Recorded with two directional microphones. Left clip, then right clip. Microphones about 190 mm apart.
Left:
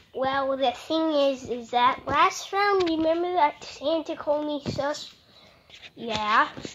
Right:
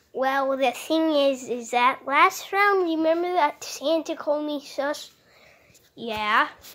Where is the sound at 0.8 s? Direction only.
25° right (ahead or behind).